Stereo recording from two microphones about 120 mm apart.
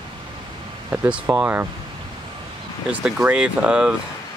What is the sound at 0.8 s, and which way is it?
Speech, 15° right (ahead or behind).